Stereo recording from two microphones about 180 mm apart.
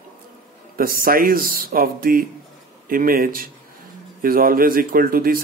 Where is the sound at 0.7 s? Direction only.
55° right (ahead or behind).